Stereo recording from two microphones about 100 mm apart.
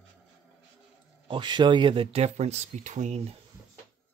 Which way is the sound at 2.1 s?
90° right.